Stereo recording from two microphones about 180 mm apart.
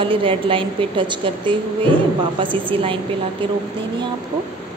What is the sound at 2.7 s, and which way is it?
Speech, 30° right (ahead or behind).